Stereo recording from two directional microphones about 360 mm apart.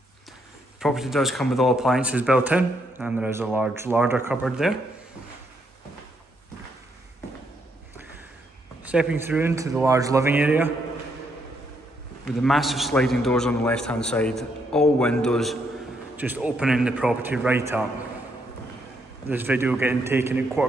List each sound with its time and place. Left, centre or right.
0.7 s speech: centre
8.8 s a man's voice: centre
12.3 s speech: centre
19.2 s speech: centre